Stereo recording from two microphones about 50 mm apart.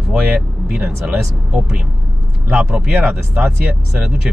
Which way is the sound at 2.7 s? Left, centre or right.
Centre.